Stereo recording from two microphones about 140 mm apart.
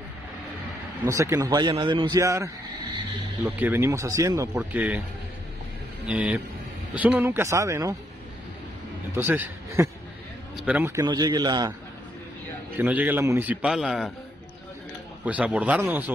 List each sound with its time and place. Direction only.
1.1 s a man's voice: 20° right (ahead or behind)
4.6 s a man's voice: 10° right (ahead or behind)
6.0 s a man's voice: 10° right (ahead or behind)
9.1 s a man's voice: 15° right (ahead or behind)
11.1 s a man's voice: 30° right (ahead or behind)
12.7 s a man's voice: 10° right (ahead or behind)
15.2 s a man's voice: 10° right (ahead or behind)